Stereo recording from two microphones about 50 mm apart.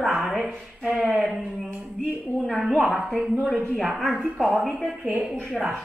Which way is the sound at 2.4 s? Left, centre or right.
Centre.